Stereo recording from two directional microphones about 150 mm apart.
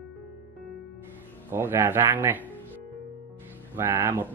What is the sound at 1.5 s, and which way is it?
Speech, 15° right (ahead or behind).